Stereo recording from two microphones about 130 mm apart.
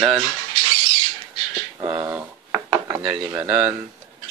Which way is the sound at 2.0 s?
20° right (ahead or behind).